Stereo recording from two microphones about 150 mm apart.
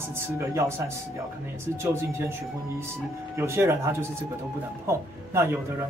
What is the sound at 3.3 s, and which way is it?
Speech, 15° right (ahead or behind).